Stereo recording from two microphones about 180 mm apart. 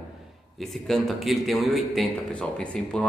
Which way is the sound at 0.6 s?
Centre (ahead or behind).